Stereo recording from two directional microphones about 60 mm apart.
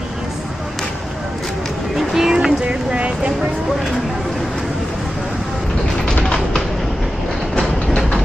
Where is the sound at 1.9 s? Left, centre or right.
Centre.